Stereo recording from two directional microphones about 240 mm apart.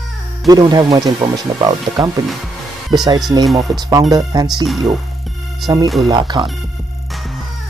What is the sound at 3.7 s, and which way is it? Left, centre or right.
Speech, centre.